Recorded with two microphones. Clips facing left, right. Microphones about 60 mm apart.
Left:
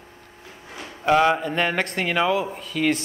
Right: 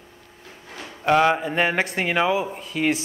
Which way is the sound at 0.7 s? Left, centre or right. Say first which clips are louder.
Even; centre.